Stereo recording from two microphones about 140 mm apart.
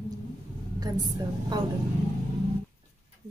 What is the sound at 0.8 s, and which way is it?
Speech, 30° right (ahead or behind).